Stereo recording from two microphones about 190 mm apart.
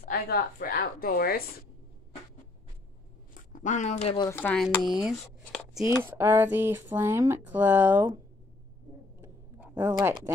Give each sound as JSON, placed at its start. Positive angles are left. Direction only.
{"t": 0.0, "sound": "a woman's voice", "side_deg": 55}
{"t": 3.5, "sound": "speech", "side_deg": 40}
{"t": 4.2, "sound": "speech", "side_deg": 10}
{"t": 4.8, "sound": "speech", "side_deg": 0}
{"t": 9.2, "sound": "a sound", "side_deg": -10}